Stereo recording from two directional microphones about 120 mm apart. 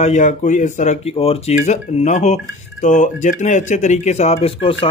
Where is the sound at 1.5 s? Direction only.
75° left (ahead or behind).